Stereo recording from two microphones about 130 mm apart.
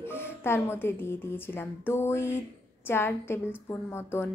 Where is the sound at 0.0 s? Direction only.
15° left (ahead or behind).